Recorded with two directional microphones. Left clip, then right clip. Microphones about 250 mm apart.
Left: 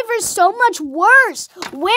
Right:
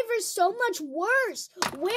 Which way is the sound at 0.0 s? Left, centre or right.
Centre.